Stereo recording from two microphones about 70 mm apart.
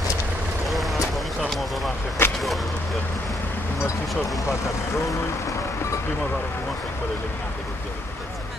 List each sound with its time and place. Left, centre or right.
0.7 s vehicle: centre
1.4 s a sound: centre
2.2 s vehicle: left